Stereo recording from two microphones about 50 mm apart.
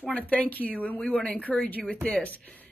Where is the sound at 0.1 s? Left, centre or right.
Left.